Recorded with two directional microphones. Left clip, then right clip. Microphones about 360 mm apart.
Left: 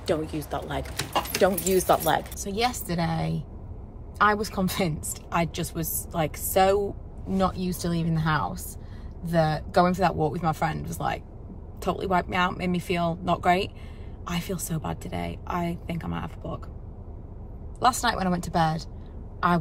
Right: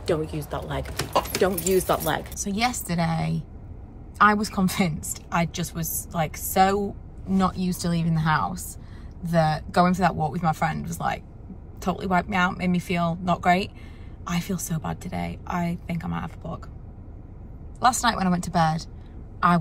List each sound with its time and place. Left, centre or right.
0.0 s a woman's voice: centre
0.9 s a sound: right
1.4 s a woman's voice: centre
17.7 s a woman's voice: centre